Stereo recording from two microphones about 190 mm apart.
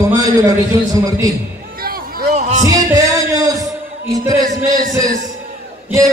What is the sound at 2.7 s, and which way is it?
Music, 15° right (ahead or behind).